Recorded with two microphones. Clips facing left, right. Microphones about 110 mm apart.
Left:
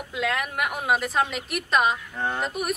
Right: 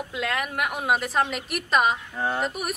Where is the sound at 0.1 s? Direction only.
Centre (ahead or behind).